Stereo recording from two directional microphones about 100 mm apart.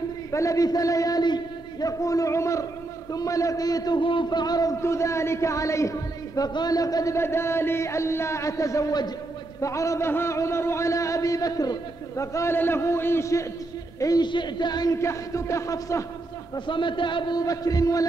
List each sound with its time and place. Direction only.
0.3 s a man's voice: 30° left (ahead or behind)
4.0 s a man's voice: 55° left (ahead or behind); by 7.2 s 35° left (ahead or behind)
7.2 s a man's voice: 25° left (ahead or behind)
14.2 s speech: 50° left (ahead or behind)
15.0 s a man's voice: 30° left (ahead or behind)
16.5 s a man's voice: 55° left (ahead or behind)
17.4 s a man's voice: 40° left (ahead or behind)